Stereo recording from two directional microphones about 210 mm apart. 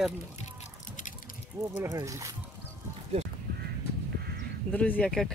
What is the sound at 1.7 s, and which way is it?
Speech, 15° right (ahead or behind).